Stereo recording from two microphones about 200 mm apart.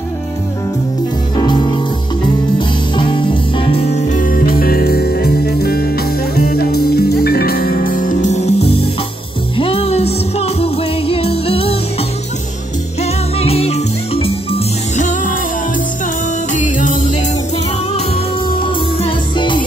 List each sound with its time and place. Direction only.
1.3 s music: 20° left (ahead or behind)
3.0 s music: 25° left (ahead or behind)
4.1 s music: 40° left (ahead or behind)
13.0 s music: 30° left (ahead or behind)
16.5 s music: 40° left (ahead or behind)
18.6 s music: 25° left (ahead or behind)